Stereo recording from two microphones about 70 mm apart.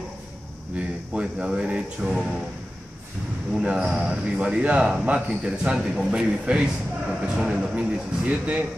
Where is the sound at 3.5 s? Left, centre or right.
Centre.